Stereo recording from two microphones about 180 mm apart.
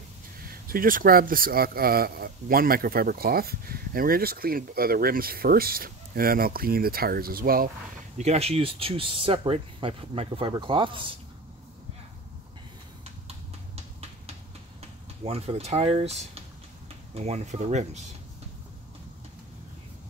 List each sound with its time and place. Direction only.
0.5 s speech: 55° right (ahead or behind)
8.2 s speech: 35° right (ahead or behind)
15.2 s speech: 35° right (ahead or behind)